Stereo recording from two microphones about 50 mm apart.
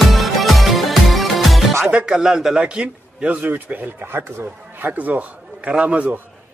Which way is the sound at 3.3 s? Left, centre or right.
Right.